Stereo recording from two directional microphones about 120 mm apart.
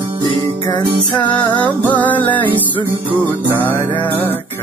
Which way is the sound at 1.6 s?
15° left (ahead or behind).